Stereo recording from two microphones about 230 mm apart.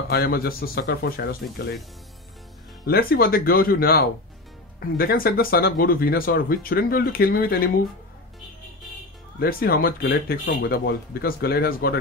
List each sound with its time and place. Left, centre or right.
0.1 s speech: left
2.9 s speech: left
9.4 s speech: left